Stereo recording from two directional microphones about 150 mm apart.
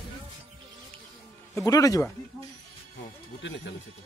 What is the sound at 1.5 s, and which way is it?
Speech, 20° left (ahead or behind).